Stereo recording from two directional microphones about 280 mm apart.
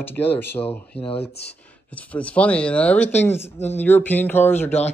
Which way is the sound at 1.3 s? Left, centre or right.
Left.